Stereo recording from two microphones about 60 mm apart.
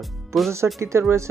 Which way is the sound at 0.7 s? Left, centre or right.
Right.